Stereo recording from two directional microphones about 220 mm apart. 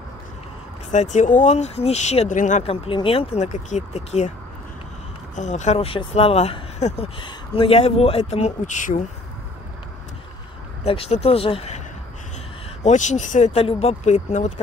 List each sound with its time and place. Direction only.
0.9 s speech: 35° left (ahead or behind)
5.3 s speech: 30° left (ahead or behind)
10.9 s speech: 30° left (ahead or behind)
12.8 s speech: 35° left (ahead or behind)